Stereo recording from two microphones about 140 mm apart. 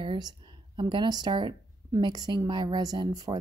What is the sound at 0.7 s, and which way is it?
A woman's voice, 35° right (ahead or behind).